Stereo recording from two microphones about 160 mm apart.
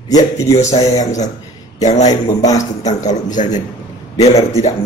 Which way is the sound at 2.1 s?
25° left (ahead or behind).